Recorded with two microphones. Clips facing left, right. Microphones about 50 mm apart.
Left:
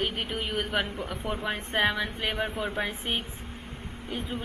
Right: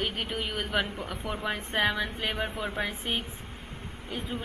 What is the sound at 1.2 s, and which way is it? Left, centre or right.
Speech, left.